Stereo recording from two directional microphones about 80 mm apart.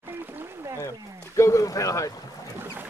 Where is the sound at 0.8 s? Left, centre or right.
Left.